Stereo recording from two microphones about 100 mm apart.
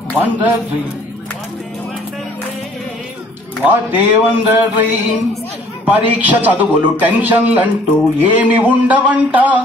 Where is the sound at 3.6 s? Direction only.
20° right (ahead or behind).